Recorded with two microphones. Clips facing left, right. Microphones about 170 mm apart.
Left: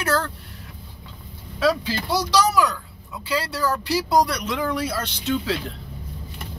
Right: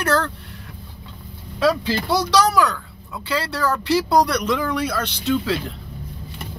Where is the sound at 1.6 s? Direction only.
65° right (ahead or behind).